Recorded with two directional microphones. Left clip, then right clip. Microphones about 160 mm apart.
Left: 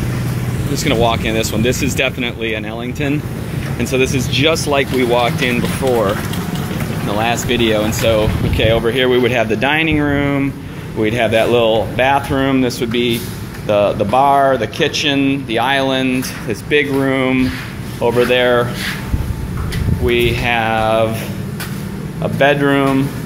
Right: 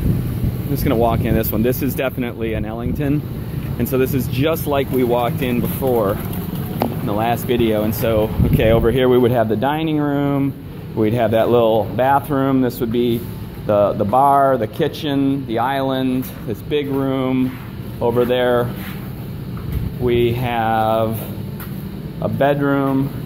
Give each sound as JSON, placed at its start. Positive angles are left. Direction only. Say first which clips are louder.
{"t": 0.8, "sound": "speech", "louder": "left 2 dB", "side_deg": -40}
{"t": 7.1, "sound": "speech", "louder": "left 4 dB", "side_deg": -40}
{"t": 12.1, "sound": "speech", "louder": "left 2 dB", "side_deg": -20}
{"t": 16.7, "sound": "speech", "louder": "left 5 dB", "side_deg": -10}
{"t": 20.1, "sound": "speech", "louder": "left 3 dB", "side_deg": -30}
{"t": 22.2, "sound": "speech", "louder": "left 4 dB", "side_deg": -20}
{"t": 22.6, "sound": "speech", "louder": "left 4 dB", "side_deg": -5}